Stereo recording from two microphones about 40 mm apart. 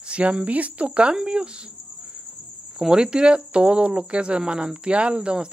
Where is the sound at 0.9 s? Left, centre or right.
Right.